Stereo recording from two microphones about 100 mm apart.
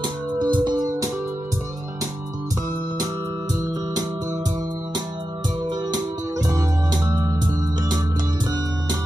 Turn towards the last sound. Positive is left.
turn(degrees=-40)  # may be behind; listen again after turning